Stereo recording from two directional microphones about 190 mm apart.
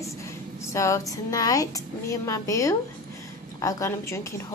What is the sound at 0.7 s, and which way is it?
A woman's voice, 15° left (ahead or behind).